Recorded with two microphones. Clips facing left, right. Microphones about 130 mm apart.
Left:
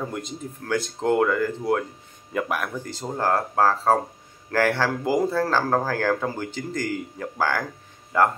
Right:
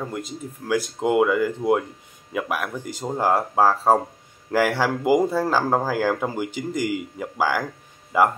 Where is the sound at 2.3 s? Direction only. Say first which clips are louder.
Even; 5° right (ahead or behind).